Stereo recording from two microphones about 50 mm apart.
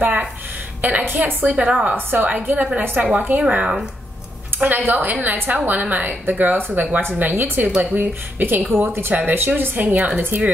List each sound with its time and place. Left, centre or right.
0.0 s a sound: right
0.8 s speech: right
1.7 s a woman's voice: right
2.0 s a woman's voice: right
9.1 s a woman's voice: right